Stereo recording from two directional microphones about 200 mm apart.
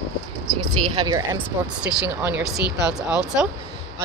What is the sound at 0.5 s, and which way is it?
Speech, 20° right (ahead or behind).